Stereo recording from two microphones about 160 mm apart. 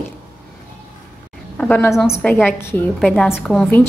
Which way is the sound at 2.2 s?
10° left (ahead or behind).